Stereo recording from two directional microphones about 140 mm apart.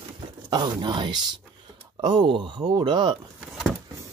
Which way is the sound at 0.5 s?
30° right (ahead or behind).